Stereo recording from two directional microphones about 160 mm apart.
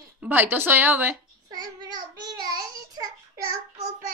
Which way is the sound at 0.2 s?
10° right (ahead or behind).